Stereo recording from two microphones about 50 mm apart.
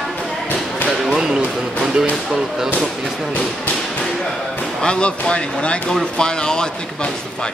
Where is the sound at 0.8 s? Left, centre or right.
Centre.